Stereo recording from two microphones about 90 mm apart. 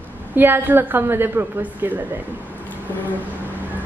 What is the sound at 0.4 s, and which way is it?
A woman's voice, 25° right (ahead or behind).